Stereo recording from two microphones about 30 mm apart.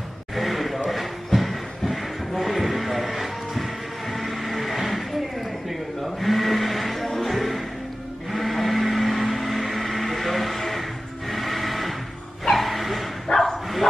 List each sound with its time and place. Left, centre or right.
0.4 s a sound: centre
4.1 s music: centre
5.7 s a sound: centre
7.2 s music: centre
8.3 s vehicle: centre
12.4 s bow-wow: centre
13.3 s bow-wow: left